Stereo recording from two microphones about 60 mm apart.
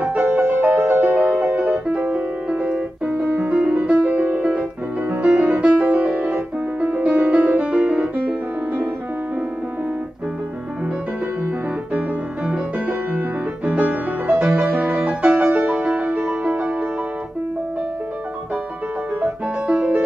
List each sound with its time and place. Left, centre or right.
0.2 s music: right
12.7 s music: right
14.7 s music: right
19.7 s music: right